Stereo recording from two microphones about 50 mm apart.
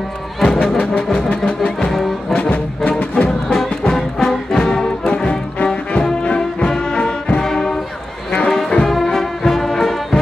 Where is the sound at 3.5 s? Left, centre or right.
Centre.